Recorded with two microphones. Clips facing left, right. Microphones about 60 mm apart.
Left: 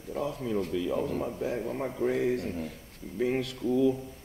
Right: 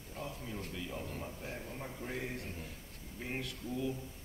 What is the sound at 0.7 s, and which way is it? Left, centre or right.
Speech, left.